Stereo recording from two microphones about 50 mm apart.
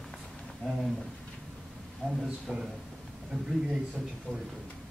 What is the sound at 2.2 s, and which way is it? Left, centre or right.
Speech, centre.